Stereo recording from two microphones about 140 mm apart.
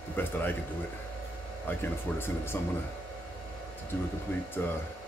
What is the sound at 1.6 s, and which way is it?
Speech, 15° left (ahead or behind).